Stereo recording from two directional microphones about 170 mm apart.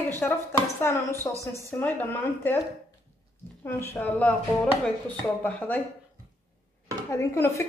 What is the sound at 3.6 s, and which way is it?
A woman's voice, 15° left (ahead or behind).